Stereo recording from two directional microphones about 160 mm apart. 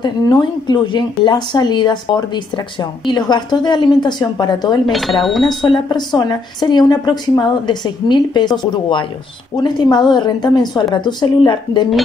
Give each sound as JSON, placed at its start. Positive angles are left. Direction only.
{"t": 0.0, "sound": "speech", "side_deg": 25}
{"t": 4.9, "sound": "speech", "side_deg": 0}
{"t": 5.7, "sound": "speech", "side_deg": 25}